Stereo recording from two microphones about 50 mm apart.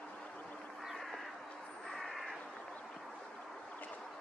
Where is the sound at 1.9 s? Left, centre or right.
Centre.